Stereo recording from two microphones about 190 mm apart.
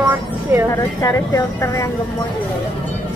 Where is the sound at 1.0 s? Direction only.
15° left (ahead or behind).